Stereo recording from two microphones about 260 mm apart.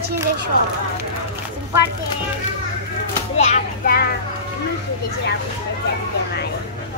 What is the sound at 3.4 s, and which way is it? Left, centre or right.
Speech, left.